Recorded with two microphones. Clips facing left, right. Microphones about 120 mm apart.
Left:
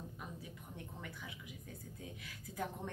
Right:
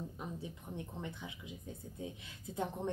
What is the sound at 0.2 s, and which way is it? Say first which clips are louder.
A woman's voice: right 5 dB; 25° right (ahead or behind).